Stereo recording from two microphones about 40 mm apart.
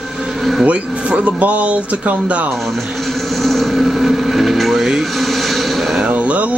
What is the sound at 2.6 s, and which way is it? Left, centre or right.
Vehicle, centre.